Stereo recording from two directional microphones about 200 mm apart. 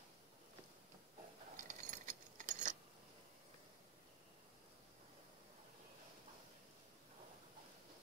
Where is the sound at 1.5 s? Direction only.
40° right (ahead or behind).